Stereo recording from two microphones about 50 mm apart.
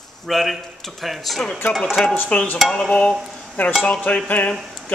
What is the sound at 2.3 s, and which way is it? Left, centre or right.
Dishes, left.